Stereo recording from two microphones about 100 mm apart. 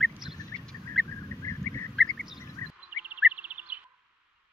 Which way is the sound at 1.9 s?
Centre (ahead or behind).